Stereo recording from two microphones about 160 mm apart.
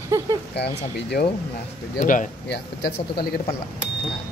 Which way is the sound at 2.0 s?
55° left (ahead or behind).